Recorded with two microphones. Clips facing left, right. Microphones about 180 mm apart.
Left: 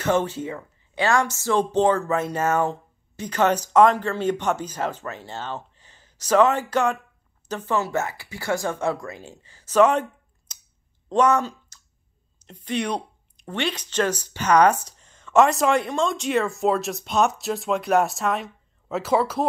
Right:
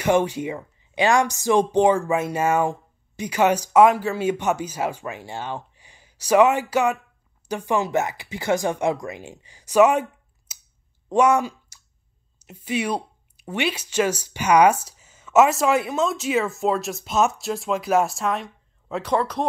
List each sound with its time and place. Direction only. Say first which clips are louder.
0.0 s speech: right 2 dB; 15° right (ahead or behind)
10.5 s a sound: right 1 dB; 5° right (ahead or behind)
11.1 s speech: right 1 dB; 10° right (ahead or behind)